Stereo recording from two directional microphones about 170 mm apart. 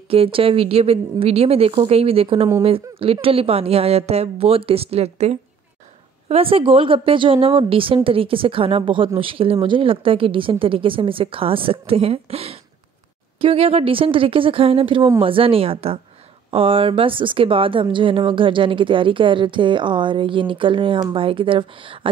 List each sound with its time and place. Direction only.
0.1 s a woman's voice: 35° right (ahead or behind)